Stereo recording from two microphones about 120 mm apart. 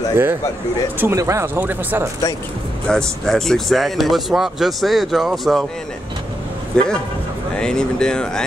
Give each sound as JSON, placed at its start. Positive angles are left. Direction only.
{"t": 0.9, "sound": "speech", "side_deg": -20}
{"t": 2.9, "sound": "speech", "side_deg": 5}
{"t": 6.7, "sound": "speech", "side_deg": 5}